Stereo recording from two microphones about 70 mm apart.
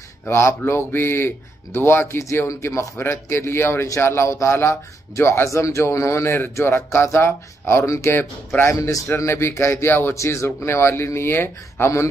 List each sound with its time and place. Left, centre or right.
0.3 s speech: left
9.1 s speech: left
10.1 s speech: left